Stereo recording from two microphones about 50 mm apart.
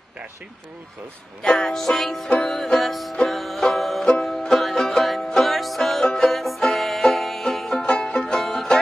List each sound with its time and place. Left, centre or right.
1.4 s music: centre
2.2 s music: centre
2.5 s music: centre
7.8 s music: centre